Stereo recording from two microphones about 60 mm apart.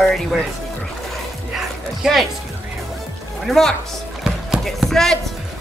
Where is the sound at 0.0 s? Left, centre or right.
Centre.